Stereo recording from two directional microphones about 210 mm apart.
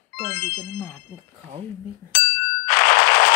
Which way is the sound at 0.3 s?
45° left (ahead or behind).